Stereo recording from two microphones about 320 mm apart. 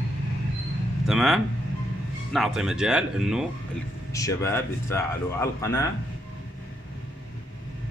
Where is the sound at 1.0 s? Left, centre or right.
Centre.